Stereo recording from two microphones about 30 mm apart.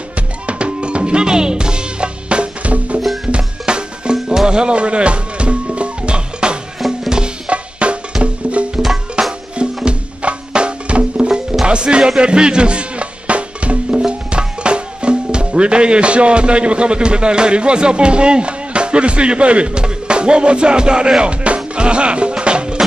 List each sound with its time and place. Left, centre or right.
0.5 s music: right
3.3 s music: right
9.2 s music: right
13.9 s speech: right
21.2 s music: right